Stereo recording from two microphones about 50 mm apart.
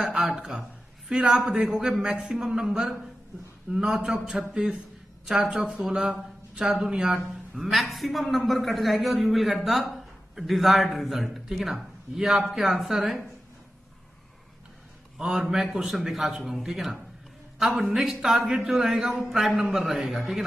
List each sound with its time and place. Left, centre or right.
0.0 s speech: centre
0.4 s a man's voice: centre
15.1 s a man's voice: centre